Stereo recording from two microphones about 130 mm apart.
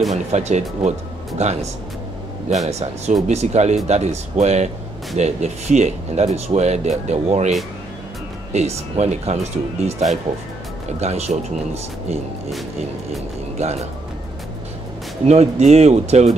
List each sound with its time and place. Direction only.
0.1 s speech: 60° right (ahead or behind)
8.5 s speech: 55° right (ahead or behind)
13.6 s speech: 55° right (ahead or behind)
15.2 s speech: 55° right (ahead or behind)